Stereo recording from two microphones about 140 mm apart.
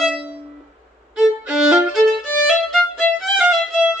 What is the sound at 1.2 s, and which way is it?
Violin, 5° right (ahead or behind).